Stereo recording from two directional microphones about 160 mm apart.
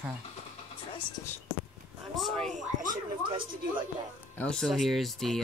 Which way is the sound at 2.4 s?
50° right (ahead or behind).